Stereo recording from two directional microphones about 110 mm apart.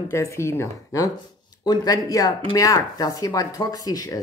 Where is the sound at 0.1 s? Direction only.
25° left (ahead or behind).